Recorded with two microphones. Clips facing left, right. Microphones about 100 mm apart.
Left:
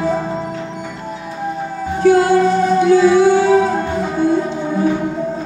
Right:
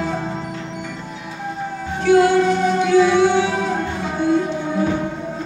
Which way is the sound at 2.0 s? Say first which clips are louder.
Left 2 dB; 40° left (ahead or behind).